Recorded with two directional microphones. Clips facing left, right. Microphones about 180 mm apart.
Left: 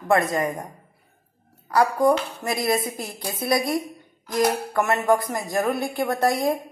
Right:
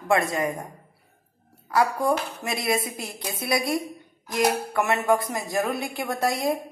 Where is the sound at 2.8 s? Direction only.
20° left (ahead or behind).